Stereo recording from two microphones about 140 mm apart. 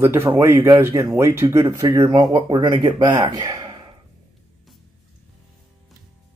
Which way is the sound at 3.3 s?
30° right (ahead or behind).